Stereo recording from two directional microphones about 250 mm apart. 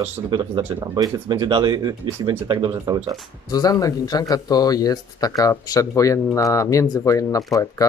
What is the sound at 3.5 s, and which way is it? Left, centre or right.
Speech, centre.